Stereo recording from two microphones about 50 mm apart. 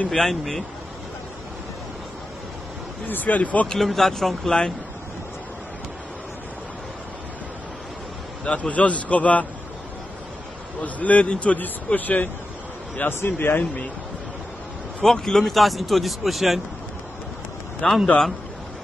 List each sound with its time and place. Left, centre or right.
0.1 s speech: centre
3.1 s speech: left
3.6 s speech: centre
8.5 s a man's voice: left
10.8 s speech: left
13.2 s speech: left
15.0 s speech: centre
17.8 s speech: centre